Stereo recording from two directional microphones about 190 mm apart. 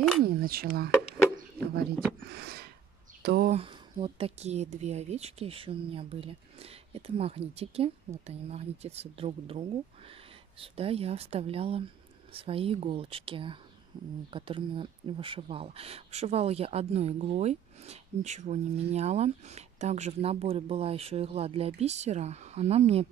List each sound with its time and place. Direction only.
0.2 s speech: 50° right (ahead or behind)
2.2 s a sound: 60° right (ahead or behind)
3.4 s speech: 30° right (ahead or behind)